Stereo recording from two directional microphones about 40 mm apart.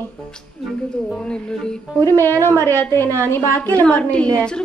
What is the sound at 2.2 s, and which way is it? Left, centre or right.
A woman's voice, left.